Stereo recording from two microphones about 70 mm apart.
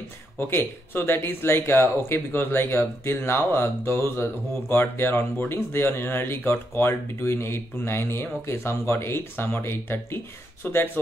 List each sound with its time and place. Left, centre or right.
0.5 s speech: left